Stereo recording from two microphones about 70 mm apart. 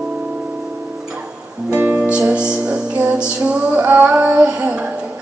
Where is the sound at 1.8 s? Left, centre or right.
Right.